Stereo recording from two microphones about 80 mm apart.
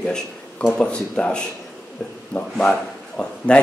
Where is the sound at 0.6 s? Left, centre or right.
Centre.